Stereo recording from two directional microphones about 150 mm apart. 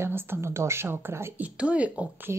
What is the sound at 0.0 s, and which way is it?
A woman's voice, 15° right (ahead or behind).